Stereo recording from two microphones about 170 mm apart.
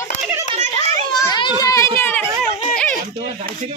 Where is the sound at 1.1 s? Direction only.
25° left (ahead or behind).